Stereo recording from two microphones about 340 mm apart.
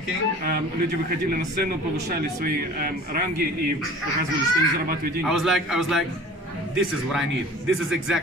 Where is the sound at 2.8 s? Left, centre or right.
Right.